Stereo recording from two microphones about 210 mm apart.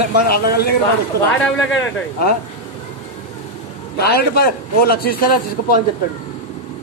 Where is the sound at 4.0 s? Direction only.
50° left (ahead or behind).